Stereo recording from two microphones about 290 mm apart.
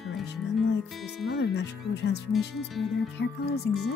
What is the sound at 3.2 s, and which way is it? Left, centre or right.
Speech, left.